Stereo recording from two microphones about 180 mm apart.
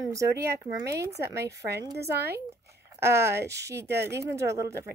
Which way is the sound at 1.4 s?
65° right (ahead or behind).